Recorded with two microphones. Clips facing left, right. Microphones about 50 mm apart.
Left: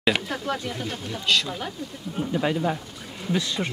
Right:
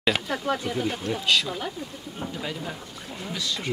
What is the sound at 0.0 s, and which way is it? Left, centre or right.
Speech, centre.